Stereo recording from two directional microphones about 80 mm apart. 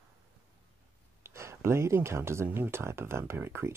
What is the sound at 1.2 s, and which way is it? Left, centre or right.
Speech, right.